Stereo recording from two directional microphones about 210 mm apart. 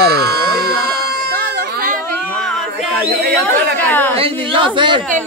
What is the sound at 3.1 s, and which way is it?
Speech, 50° right (ahead or behind).